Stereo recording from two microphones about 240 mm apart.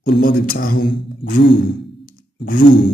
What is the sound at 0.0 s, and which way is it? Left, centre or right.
Speech, left.